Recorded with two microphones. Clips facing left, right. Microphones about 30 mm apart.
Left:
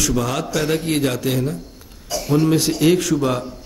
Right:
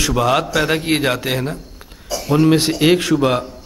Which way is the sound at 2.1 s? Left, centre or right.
Centre.